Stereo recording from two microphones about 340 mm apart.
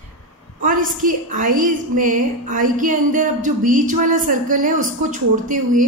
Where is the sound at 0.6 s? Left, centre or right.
Right.